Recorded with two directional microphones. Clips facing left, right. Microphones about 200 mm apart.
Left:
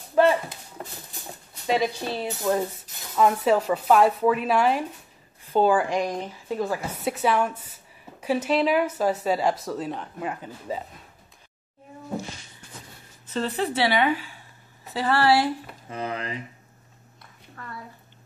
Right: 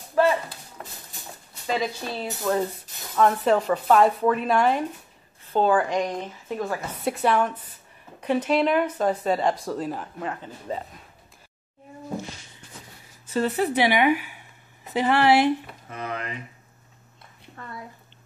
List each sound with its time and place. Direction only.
1.7 s a woman's voice: 10° left (ahead or behind)
10.2 s a woman's voice: 10° left (ahead or behind)
13.3 s a woman's voice: 10° right (ahead or behind)
15.9 s speech: 30° left (ahead or behind)